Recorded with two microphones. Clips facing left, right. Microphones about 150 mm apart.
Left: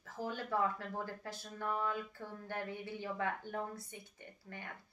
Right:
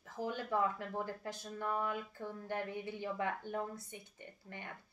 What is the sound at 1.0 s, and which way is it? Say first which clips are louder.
A woman's voice: right 2 dB; 15° right (ahead or behind).